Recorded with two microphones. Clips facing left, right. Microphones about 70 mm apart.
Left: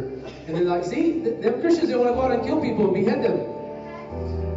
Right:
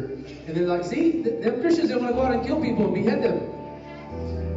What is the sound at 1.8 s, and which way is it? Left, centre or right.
A man's voice, left.